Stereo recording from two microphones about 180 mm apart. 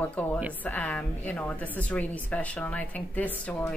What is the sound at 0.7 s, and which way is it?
A woman's voice, 10° left (ahead or behind).